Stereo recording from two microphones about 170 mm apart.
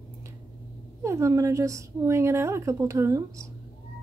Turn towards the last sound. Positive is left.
turn(degrees=-20)  # may be behind; listen again after turning